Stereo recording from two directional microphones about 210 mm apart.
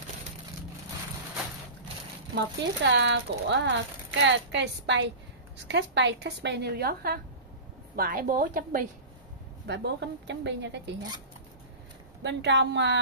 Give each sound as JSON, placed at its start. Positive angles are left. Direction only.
{"t": 2.3, "sound": "a woman's voice", "side_deg": -55}
{"t": 9.7, "sound": "speech", "side_deg": -55}
{"t": 12.2, "sound": "speech", "side_deg": -55}